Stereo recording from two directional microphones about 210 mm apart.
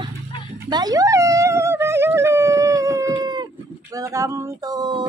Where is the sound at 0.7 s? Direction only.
20° right (ahead or behind).